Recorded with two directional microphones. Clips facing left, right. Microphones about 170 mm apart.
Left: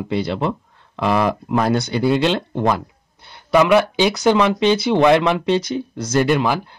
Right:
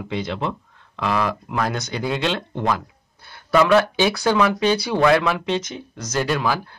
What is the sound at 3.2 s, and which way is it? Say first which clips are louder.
Speech: left 2 dB; 20° left (ahead or behind).